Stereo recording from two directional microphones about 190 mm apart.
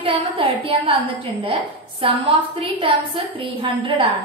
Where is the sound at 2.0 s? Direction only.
30° right (ahead or behind).